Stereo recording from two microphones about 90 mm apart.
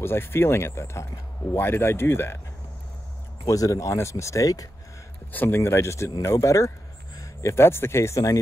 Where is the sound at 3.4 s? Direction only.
35° left (ahead or behind).